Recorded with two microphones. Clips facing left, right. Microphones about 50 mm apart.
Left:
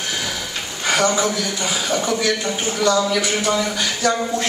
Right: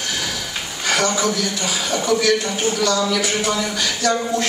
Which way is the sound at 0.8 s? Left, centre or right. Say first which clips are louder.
Left 2 dB; left.